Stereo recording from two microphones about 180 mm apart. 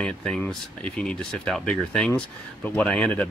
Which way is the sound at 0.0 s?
5° left (ahead or behind).